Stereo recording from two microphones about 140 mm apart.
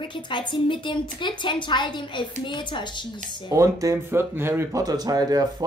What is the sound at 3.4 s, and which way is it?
Speech, 20° right (ahead or behind).